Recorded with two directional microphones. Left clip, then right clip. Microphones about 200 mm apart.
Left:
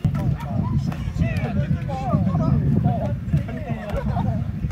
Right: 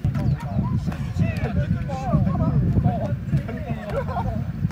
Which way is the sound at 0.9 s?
Centre (ahead or behind).